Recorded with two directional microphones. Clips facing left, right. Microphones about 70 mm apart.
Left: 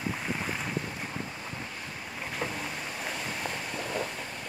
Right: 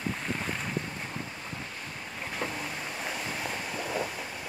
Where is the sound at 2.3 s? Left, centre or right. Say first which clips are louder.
Even; centre.